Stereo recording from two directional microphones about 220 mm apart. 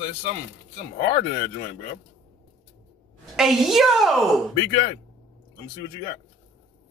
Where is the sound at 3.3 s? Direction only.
Centre (ahead or behind).